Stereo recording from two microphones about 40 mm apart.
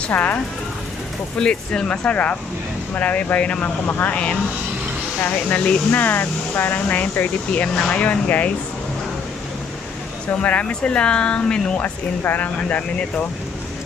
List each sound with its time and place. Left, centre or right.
0.1 s speech: left
1.4 s speech: left
3.6 s speech: left
4.1 s speech: left
5.9 s speech: left
6.5 s speech: left
10.4 s speech: left
10.7 s speech: left
11.8 s speech: left